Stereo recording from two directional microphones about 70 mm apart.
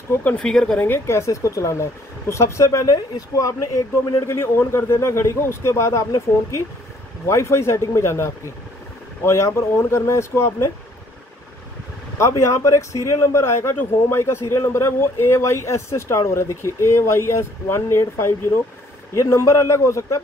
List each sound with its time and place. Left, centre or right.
0.4 s a woman's voice: centre
0.7 s speech: left
4.3 s speech: left
12.2 s speech: left